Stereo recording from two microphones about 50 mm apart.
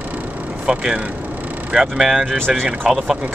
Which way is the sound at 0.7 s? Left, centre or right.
Right.